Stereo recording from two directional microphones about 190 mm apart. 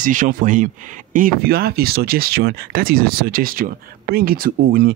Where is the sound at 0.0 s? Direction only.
45° right (ahead or behind).